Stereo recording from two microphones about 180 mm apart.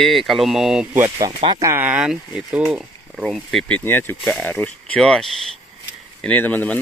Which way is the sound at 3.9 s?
10° left (ahead or behind).